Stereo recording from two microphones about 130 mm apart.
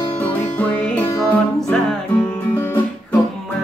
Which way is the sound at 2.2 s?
15° left (ahead or behind).